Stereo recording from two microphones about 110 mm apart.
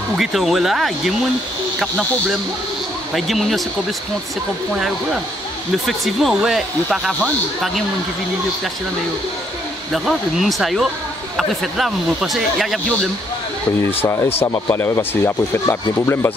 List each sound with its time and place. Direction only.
0.2 s speech: 5° right (ahead or behind)
3.2 s speech: centre (ahead or behind)
5.9 s speech: centre (ahead or behind)
9.9 s speech: 5° right (ahead or behind)
13.8 s speech: 25° left (ahead or behind)